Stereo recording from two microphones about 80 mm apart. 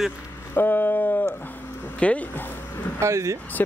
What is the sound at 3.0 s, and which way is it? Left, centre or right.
Speech, right.